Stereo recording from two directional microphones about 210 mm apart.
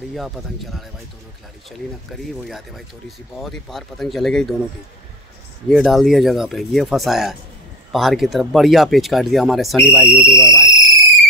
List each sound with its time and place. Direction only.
0.1 s speech: centre (ahead or behind)
2.4 s speech: centre (ahead or behind)
5.7 s speech: centre (ahead or behind)
10.0 s owl: 20° right (ahead or behind)